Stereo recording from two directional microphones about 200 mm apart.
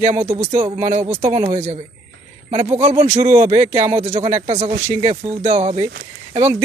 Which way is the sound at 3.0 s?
35° right (ahead or behind).